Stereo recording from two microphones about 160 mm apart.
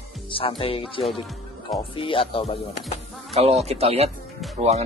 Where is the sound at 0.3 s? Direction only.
35° left (ahead or behind).